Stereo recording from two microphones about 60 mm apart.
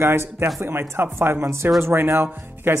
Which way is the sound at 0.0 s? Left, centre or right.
Right.